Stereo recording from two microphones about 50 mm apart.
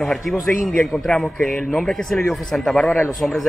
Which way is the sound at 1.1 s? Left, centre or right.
Centre.